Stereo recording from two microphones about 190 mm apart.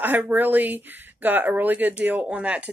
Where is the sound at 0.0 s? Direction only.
10° right (ahead or behind).